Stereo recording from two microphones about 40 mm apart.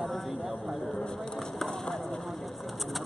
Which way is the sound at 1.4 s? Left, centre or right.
Centre.